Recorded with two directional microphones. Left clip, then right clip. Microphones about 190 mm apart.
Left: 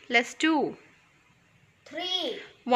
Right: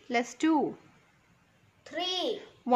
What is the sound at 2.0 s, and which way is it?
Speech, 25° right (ahead or behind).